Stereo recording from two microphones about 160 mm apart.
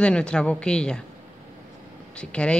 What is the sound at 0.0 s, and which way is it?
A woman's voice, 5° left (ahead or behind).